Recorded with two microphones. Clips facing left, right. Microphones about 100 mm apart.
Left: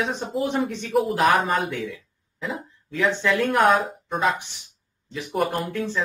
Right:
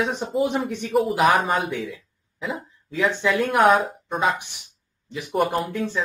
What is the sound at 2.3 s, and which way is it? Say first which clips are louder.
Cough: right 1 dB; 5° right (ahead or behind).